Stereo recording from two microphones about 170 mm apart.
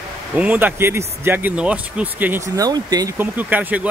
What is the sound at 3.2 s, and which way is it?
Speech, 10° right (ahead or behind).